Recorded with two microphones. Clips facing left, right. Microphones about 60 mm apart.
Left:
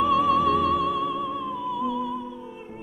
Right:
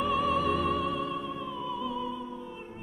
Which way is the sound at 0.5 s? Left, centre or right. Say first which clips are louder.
Left 6 dB; left.